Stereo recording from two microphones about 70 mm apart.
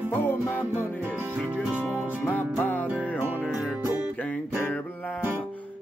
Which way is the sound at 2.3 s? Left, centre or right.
Left.